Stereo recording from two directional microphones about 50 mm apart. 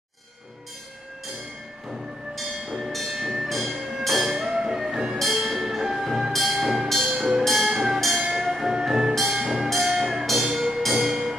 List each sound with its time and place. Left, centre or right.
2.8 s train: centre
3.4 s music: centre
4.4 s music: centre
6.3 s train: centre
6.9 s music: centre
7.2 s music: centre
7.4 s music: centre